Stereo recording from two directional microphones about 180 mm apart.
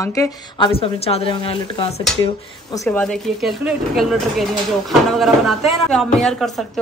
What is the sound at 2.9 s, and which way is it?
A woman's voice, 5° left (ahead or behind).